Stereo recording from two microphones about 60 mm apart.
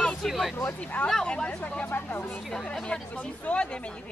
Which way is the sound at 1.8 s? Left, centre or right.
Left.